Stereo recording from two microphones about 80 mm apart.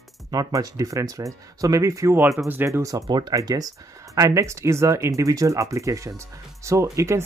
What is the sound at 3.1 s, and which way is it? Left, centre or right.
Speech, right.